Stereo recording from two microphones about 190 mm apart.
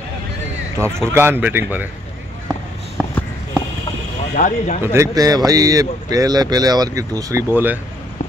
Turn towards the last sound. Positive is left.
turn(degrees=-10)  # may be behind; listen again after turning